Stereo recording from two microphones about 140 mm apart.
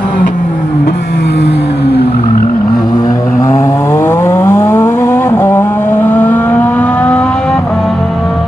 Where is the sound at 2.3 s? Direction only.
90° left.